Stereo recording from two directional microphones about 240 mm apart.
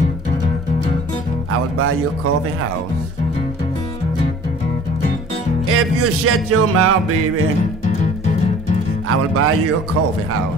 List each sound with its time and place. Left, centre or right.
5.7 s music: right
9.1 s music: right